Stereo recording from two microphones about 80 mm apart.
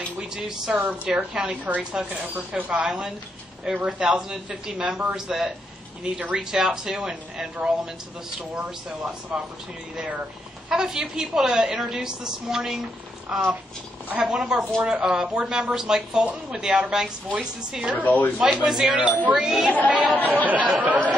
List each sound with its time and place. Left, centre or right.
0.2 s a woman's voice: centre
9.3 s a woman's voice: centre
10.7 s a woman's voice: centre
18.0 s speech: left
18.7 s speech: centre
18.9 s a woman's voice: centre
20.2 s speech: left
20.4 s speech: centre